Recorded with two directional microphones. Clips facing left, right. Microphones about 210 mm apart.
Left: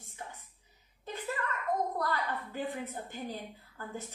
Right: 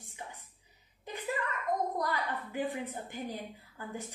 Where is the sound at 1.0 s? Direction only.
15° right (ahead or behind).